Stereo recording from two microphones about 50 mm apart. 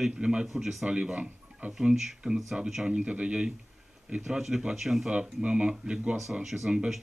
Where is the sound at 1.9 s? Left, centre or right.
Centre.